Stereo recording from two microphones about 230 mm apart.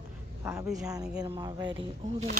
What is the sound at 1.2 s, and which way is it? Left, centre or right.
Speech, centre.